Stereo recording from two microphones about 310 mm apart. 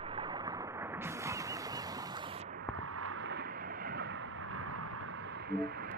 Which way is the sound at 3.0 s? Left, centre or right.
Right.